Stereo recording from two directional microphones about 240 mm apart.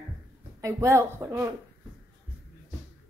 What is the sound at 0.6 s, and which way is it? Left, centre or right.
Speech, centre.